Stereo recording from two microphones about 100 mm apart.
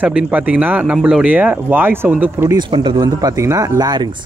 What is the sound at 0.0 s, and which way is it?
Speech, 15° right (ahead or behind).